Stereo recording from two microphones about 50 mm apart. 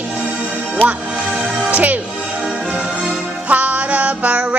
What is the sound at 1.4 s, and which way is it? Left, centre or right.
Music, right.